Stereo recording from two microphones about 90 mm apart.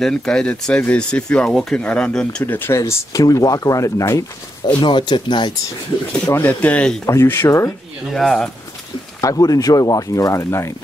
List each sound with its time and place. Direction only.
0.0 s speech: 10° left (ahead or behind)
2.4 s speech: 25° left (ahead or behind)
2.8 s speech: 35° left (ahead or behind)
4.6 s speech: 60° left (ahead or behind)
6.3 s speech: 20° left (ahead or behind)
7.1 s speech: 30° left (ahead or behind)
8.1 s speech: 5° left (ahead or behind)
9.2 s speech: 45° left (ahead or behind)